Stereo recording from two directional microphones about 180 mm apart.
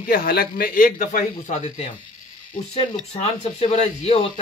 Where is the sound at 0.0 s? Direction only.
50° left (ahead or behind).